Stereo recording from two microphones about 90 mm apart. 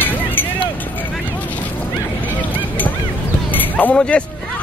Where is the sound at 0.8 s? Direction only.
20° left (ahead or behind).